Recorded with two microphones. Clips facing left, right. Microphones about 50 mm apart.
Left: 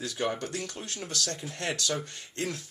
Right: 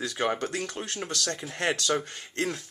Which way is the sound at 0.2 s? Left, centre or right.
Right.